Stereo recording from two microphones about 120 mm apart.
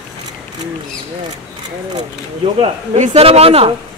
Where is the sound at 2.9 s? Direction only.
65° right (ahead or behind).